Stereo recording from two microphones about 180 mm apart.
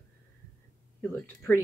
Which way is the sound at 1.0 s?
10° left (ahead or behind).